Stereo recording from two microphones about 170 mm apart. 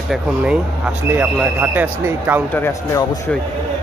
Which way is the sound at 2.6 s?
15° left (ahead or behind).